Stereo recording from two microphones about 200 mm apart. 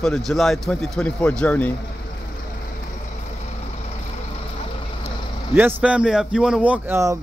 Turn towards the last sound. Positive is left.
turn(degrees=-10)  # may be behind; listen again after turning